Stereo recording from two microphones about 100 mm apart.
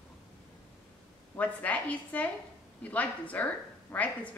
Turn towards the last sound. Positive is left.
turn(degrees=15)  # may be behind; listen again after turning